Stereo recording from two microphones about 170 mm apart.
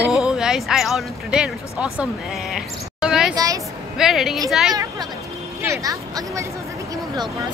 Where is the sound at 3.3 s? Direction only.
20° right (ahead or behind).